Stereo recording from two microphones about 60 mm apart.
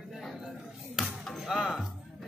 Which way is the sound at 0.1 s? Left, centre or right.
Centre.